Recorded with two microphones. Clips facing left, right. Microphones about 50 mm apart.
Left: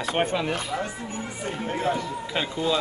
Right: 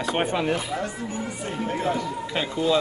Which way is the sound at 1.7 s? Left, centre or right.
Left.